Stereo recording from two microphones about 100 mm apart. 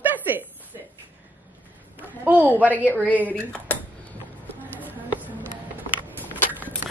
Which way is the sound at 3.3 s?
15° left (ahead or behind).